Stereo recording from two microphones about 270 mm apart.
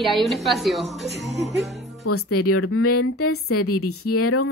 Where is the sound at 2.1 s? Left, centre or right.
Left.